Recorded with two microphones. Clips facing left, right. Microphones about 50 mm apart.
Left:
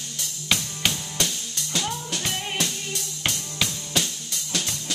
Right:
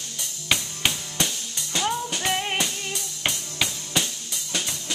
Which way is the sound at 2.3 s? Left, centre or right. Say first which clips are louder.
Right 4 dB; right.